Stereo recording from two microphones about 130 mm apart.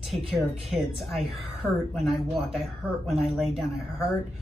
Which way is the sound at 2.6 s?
Centre (ahead or behind).